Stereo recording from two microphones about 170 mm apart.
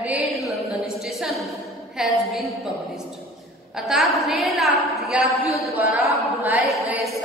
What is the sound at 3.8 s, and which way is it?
A woman's voice, centre (ahead or behind).